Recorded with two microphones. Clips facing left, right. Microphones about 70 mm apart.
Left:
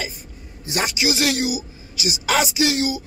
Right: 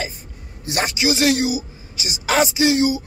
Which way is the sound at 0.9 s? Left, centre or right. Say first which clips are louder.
Right 5 dB; right.